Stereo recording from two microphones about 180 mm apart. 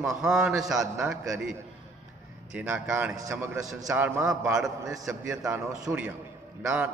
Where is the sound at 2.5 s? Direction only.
10° right (ahead or behind).